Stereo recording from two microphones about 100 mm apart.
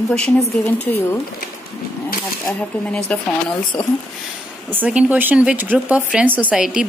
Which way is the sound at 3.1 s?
10° left (ahead or behind).